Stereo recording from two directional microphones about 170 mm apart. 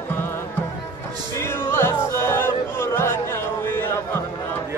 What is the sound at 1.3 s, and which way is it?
Music, 15° left (ahead or behind).